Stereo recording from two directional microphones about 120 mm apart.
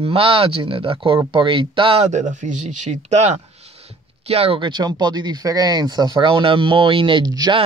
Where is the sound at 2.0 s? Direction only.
85° right.